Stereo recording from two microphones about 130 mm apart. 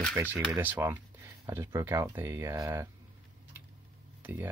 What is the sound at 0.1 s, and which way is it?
Speech, 15° right (ahead or behind).